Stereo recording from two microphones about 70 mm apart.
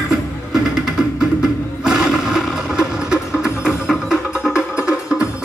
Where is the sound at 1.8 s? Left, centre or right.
Centre.